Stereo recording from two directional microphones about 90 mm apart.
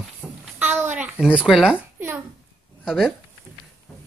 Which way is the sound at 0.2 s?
15° left (ahead or behind).